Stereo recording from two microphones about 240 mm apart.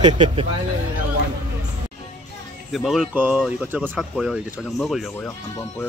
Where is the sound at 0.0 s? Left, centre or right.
Right.